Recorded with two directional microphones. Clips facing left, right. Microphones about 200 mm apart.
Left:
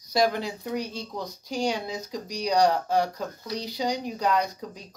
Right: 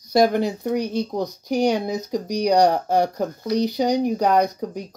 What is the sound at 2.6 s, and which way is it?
Speech, 60° right (ahead or behind).